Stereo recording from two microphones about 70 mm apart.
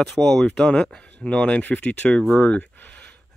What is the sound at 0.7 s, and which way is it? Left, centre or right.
Speech, centre.